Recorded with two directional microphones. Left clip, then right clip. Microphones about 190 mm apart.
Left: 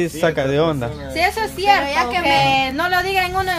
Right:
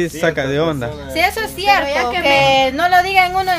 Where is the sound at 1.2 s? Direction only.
70° right (ahead or behind).